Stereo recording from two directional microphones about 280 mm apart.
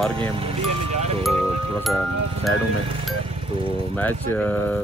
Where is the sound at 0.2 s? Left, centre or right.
Centre.